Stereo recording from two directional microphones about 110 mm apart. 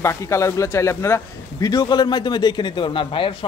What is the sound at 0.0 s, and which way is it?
Speech, 25° left (ahead or behind).